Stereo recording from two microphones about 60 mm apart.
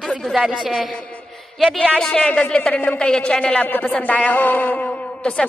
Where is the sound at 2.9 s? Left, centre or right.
Centre.